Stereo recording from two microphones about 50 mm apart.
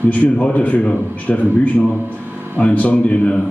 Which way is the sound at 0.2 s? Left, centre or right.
Left.